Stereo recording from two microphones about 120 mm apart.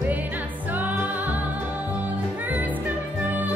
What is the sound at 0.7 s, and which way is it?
Music, 15° right (ahead or behind).